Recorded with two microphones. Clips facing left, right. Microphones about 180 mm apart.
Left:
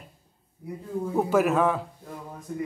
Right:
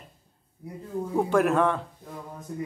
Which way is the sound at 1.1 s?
5° left (ahead or behind).